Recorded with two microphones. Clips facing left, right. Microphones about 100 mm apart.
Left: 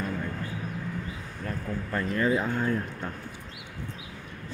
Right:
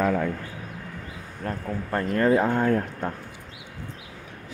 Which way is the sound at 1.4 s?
50° right (ahead or behind).